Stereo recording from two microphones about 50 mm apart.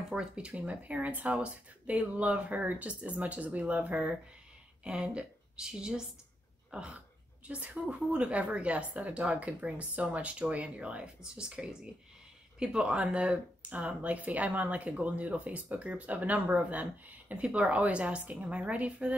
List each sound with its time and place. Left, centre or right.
0.1 s speech: centre
0.6 s a woman's voice: right